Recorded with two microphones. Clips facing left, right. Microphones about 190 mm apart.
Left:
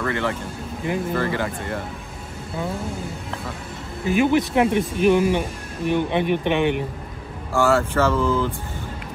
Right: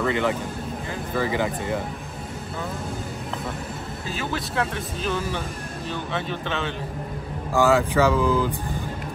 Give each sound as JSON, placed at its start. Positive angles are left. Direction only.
{"t": 0.0, "sound": "speech", "side_deg": -15}
{"t": 4.0, "sound": "speech", "side_deg": 15}
{"t": 7.5, "sound": "speech", "side_deg": -15}